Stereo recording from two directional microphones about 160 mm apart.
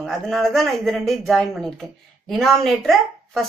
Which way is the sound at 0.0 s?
Centre (ahead or behind).